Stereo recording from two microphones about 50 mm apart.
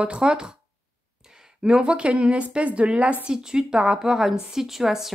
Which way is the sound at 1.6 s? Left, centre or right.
Centre.